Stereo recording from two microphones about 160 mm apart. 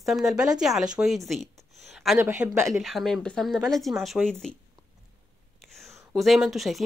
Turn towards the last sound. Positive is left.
turn(degrees=0)  # may be behind; listen again after turning